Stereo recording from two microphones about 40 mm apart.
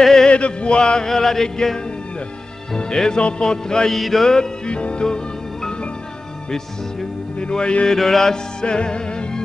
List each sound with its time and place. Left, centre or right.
0.0 s chant: centre
0.3 s chant: left; by 1.8 s centre
2.7 s music: centre
4.0 s music: centre
4.6 s music: left
7.3 s music: left
7.9 s chant: centre
8.6 s music: left